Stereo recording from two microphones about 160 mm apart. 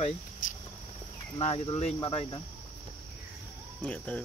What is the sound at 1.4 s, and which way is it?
Speech, 40° left (ahead or behind).